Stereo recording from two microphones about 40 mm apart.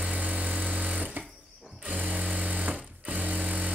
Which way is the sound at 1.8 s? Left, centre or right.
Right.